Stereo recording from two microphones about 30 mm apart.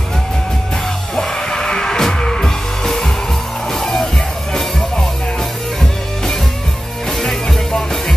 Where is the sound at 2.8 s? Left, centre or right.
Centre.